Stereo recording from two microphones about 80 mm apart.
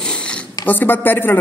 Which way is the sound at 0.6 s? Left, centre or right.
Left.